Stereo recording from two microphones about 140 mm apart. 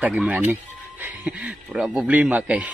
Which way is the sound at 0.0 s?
10° right (ahead or behind).